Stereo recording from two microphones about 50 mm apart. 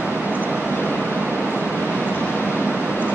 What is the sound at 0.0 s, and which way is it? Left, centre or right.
Vehicle, right.